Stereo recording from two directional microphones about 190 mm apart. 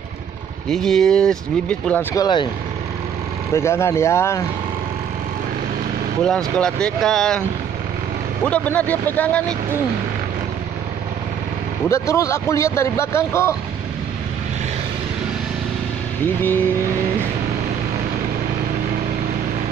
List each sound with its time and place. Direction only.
0.7 s speech: centre (ahead or behind)
2.1 s speech: 25° left (ahead or behind)
3.5 s speech: 15° left (ahead or behind)
6.2 s speech: 5° left (ahead or behind)
8.5 s speech: 10° left (ahead or behind)
11.9 s speech: 15° left (ahead or behind)